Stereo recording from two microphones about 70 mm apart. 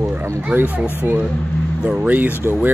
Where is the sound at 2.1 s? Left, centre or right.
Right.